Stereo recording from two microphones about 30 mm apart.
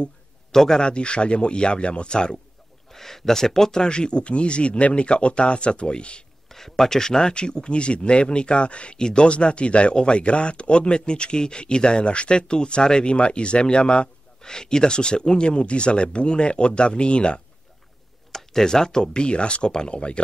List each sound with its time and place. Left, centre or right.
0.5 s a man's voice: centre
0.8 s speech: left
2.9 s speech: centre
3.8 s speech: left
6.5 s speech: centre
7.2 s speech: left
18.3 s speech: centre